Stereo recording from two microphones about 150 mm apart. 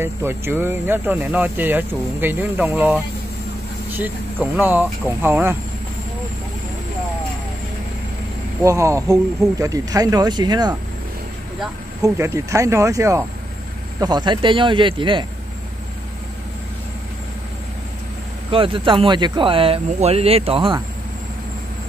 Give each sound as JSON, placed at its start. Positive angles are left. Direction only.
{"t": 0.0, "sound": "speech", "side_deg": -15}
{"t": 4.6, "sound": "speech", "side_deg": -10}
{"t": 8.6, "sound": "speech", "side_deg": -20}
{"t": 12.0, "sound": "speech", "side_deg": -20}
{"t": 18.5, "sound": "speech", "side_deg": -35}